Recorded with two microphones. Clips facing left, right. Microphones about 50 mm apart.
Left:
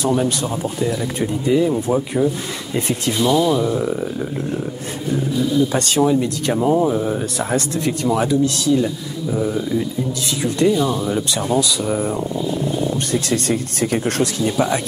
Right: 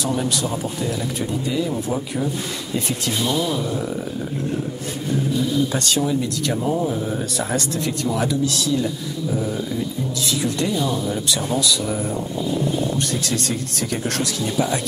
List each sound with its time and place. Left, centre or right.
0.4 s speech: left
5.7 s speech: left
10.4 s speech: centre
13.1 s speech: left